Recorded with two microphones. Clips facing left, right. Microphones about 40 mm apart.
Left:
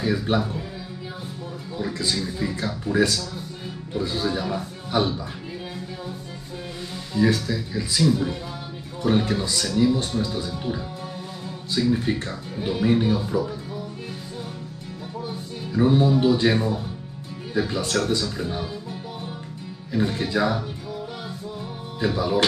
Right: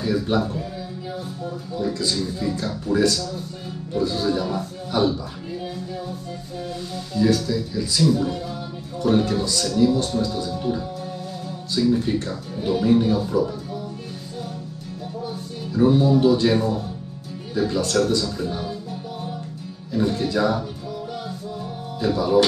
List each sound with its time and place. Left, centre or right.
0.0 s speech: left
1.8 s a man's voice: centre
7.2 s a man's voice: left
15.7 s a man's voice: centre
19.9 s a man's voice: left
22.0 s a man's voice: centre